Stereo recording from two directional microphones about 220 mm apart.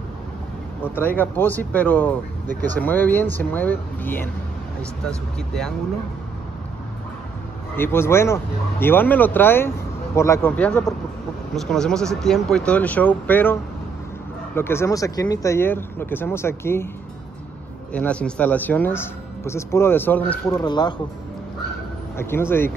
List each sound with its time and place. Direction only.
0.8 s speech: 10° left (ahead or behind)
7.7 s speech: 10° left (ahead or behind)
17.9 s speech: 5° left (ahead or behind)
20.6 s speech: 20° left (ahead or behind)
22.1 s speech: 10° left (ahead or behind)